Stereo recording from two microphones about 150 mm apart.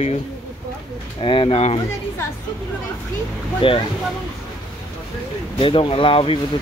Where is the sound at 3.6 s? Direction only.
35° left (ahead or behind).